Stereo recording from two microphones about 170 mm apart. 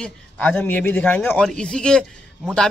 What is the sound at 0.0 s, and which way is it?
A man's voice, 5° left (ahead or behind).